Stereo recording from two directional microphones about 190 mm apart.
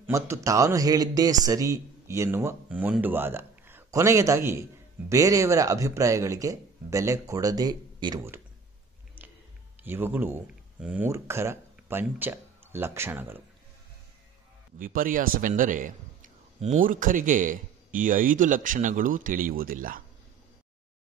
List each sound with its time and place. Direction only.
0.0 s a man's voice: 15° right (ahead or behind)
9.8 s speech: 10° right (ahead or behind)
14.8 s a man's voice: 45° right (ahead or behind)